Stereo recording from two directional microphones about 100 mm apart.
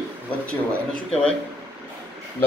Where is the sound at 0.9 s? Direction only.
10° left (ahead or behind).